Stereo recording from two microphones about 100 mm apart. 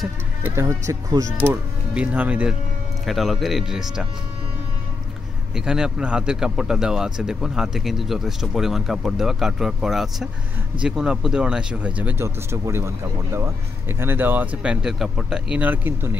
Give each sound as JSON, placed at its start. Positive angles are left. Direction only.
{"t": 0.4, "sound": "speech", "side_deg": -30}
{"t": 1.4, "sound": "speech", "side_deg": -20}
{"t": 3.1, "sound": "speech", "side_deg": 0}
{"t": 5.7, "sound": "speech", "side_deg": -5}
{"t": 15.7, "sound": "speech", "side_deg": -20}